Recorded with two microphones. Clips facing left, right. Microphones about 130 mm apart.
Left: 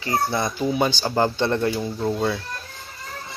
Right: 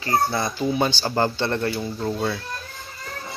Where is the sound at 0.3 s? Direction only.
15° left (ahead or behind).